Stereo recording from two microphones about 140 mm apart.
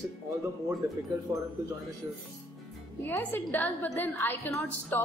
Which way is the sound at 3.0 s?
15° left (ahead or behind).